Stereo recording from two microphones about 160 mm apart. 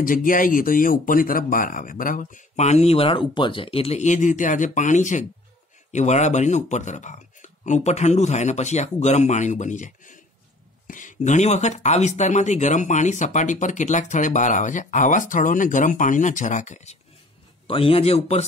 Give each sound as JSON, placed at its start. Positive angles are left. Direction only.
{"t": 0.0, "sound": "speech", "side_deg": 60}
{"t": 17.6, "sound": "a man's voice", "side_deg": 35}